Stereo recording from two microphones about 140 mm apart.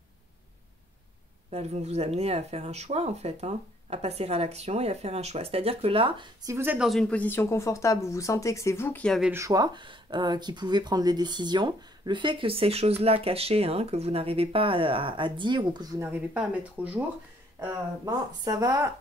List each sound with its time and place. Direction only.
1.5 s speech: 50° right (ahead or behind)
6.4 s speech: 15° right (ahead or behind)
6.8 s speech: centre (ahead or behind)
9.3 s speech: 25° right (ahead or behind)
16.1 s speech: 10° right (ahead or behind)
17.6 s speech: 20° right (ahead or behind)